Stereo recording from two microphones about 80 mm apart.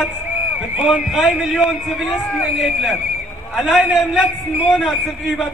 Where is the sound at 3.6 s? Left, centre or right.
Centre.